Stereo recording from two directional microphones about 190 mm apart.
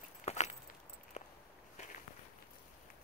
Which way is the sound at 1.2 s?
35° left (ahead or behind).